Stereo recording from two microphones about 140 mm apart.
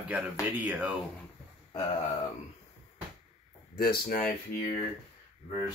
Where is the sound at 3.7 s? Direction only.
90° left.